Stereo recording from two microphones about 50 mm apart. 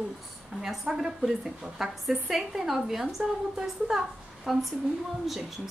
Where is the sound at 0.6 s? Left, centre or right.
Centre.